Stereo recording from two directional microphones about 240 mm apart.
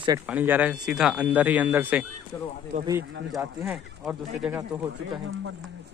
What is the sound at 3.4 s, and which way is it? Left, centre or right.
Speech, centre.